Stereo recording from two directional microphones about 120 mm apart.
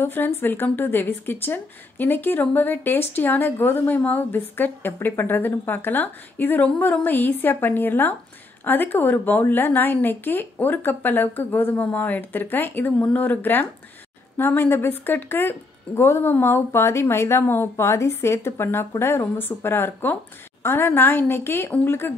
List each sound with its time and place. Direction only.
0.0 s a woman's voice: 15° left (ahead or behind)